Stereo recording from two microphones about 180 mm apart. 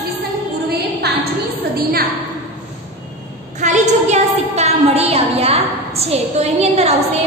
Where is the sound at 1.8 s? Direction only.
55° right (ahead or behind).